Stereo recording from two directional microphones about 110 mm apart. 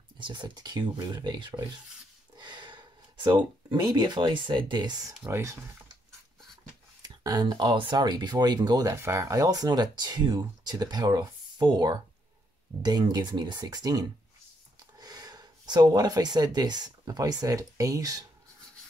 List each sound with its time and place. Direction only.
0.2 s speech: 45° right (ahead or behind)
5.2 s speech: 25° right (ahead or behind)
7.0 s speech: 35° right (ahead or behind)